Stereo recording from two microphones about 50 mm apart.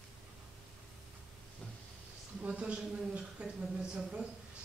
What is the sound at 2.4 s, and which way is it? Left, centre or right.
Speech, right.